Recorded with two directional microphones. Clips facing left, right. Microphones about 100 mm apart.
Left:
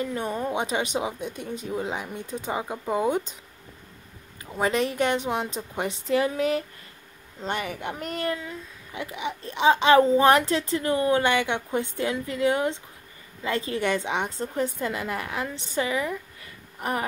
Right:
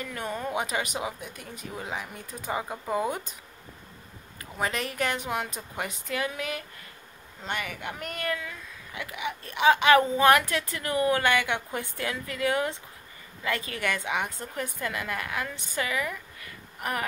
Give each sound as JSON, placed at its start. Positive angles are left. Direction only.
{"t": 0.0, "sound": "speech", "side_deg": 20}
{"t": 4.6, "sound": "a woman's voice", "side_deg": 30}